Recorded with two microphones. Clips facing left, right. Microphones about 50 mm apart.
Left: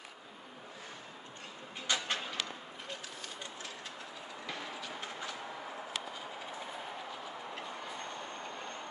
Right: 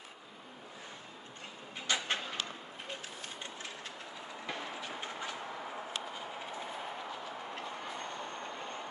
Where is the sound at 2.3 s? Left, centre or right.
Right.